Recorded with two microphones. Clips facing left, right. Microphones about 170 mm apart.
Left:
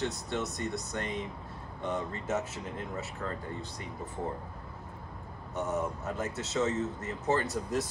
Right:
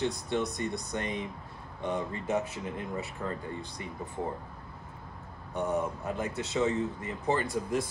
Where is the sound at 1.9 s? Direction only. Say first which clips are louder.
Right 2 dB; 15° right (ahead or behind).